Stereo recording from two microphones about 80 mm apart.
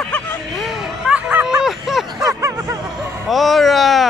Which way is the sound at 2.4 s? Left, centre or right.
Right.